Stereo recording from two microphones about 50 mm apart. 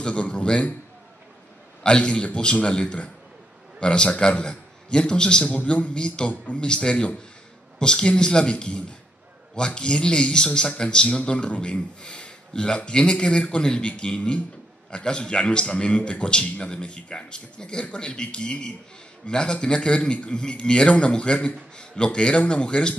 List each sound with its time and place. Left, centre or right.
0.0 s a man's voice: left
1.8 s a man's voice: centre
5.4 s a man's voice: left